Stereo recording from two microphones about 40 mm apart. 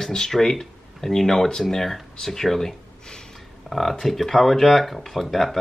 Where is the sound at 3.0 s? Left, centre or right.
Centre.